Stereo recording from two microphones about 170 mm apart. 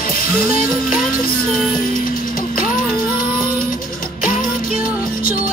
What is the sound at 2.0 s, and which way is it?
Music, 55° left (ahead or behind).